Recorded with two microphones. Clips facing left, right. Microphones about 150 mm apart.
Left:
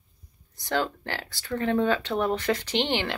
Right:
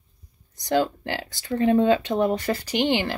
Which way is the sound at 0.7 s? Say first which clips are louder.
Right 5 dB; 15° right (ahead or behind).